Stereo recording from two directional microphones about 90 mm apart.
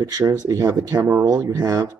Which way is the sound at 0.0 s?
35° right (ahead or behind).